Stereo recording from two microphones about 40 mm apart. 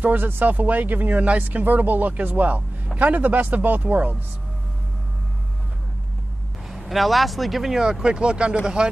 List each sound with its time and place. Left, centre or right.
0.0 s speech: right
6.8 s speech: centre
8.0 s speech: right